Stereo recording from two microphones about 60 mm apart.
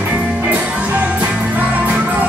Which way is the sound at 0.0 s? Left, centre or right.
Right.